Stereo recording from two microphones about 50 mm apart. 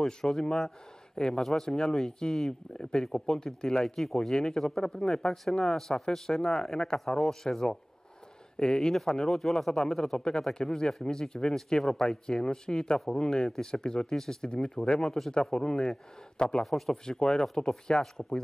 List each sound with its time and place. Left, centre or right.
0.0 s speech: centre